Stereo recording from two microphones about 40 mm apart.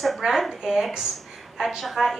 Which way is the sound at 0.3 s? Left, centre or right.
Centre.